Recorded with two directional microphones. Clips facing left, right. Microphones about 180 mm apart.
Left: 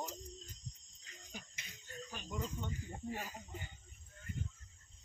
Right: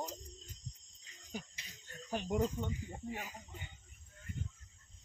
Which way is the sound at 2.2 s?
70° right (ahead or behind).